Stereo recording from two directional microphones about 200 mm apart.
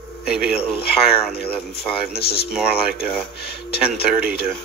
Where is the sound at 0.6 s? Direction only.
30° left (ahead or behind).